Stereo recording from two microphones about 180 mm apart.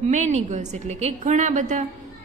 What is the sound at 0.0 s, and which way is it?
A woman's voice, 40° right (ahead or behind).